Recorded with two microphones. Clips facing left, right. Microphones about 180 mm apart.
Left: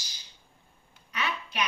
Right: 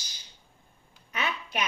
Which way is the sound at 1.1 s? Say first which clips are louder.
Right 1 dB; 55° right (ahead or behind).